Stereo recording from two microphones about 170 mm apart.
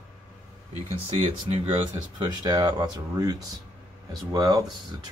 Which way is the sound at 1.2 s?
35° right (ahead or behind).